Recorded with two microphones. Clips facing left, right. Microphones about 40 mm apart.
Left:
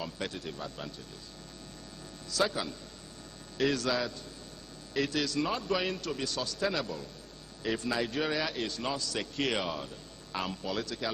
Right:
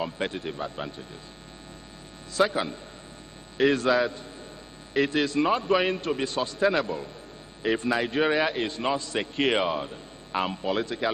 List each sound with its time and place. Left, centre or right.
0.0 s a man's voice: right
2.3 s a man's voice: right